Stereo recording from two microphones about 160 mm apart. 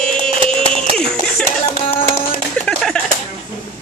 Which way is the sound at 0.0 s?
5° left (ahead or behind).